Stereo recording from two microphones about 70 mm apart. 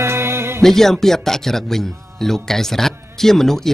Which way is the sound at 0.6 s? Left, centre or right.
Centre.